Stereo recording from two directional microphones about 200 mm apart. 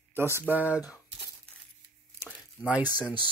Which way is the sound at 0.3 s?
10° left (ahead or behind).